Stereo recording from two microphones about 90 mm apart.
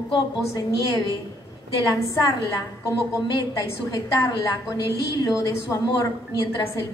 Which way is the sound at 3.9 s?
45° left (ahead or behind).